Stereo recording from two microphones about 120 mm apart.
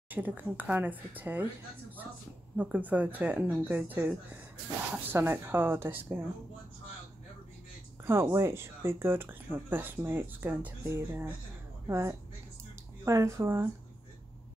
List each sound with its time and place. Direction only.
0.1 s speech: 15° right (ahead or behind)
8.0 s speech: 20° right (ahead or behind)